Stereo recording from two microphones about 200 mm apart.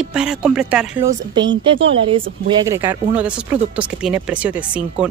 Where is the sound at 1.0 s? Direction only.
20° right (ahead or behind).